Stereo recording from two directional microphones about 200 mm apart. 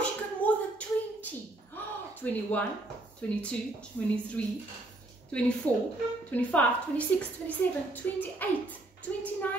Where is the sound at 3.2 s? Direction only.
5° left (ahead or behind).